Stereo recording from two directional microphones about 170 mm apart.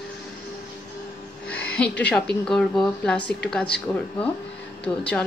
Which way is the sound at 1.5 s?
10° left (ahead or behind).